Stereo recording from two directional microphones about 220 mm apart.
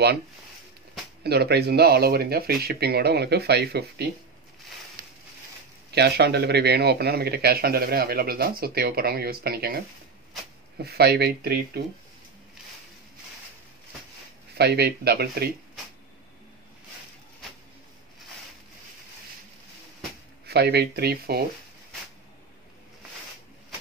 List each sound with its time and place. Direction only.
1.2 s a man's voice: 45° right (ahead or behind)
5.9 s a man's voice: 50° right (ahead or behind)
10.8 s a man's voice: 45° right (ahead or behind)
14.6 s a man's voice: 45° right (ahead or behind)
20.4 s a man's voice: 45° right (ahead or behind)